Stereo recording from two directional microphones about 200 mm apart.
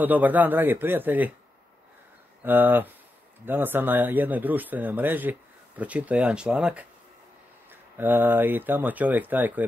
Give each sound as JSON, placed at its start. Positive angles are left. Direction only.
{"t": 0.0, "sound": "speech", "side_deg": -10}
{"t": 2.4, "sound": "speech", "side_deg": -10}